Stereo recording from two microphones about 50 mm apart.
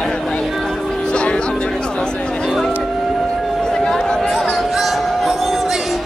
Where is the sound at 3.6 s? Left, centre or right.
Centre.